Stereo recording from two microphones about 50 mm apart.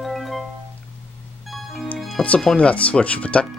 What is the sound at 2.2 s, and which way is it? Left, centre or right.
Speech, centre.